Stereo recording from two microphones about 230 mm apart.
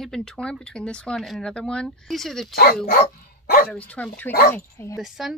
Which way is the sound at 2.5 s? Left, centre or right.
Left.